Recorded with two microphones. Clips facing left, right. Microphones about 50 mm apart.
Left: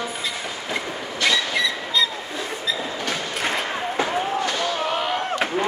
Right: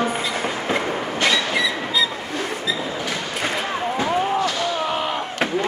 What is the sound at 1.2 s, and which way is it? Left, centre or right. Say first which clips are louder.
Vehicle: right 1 dB; centre.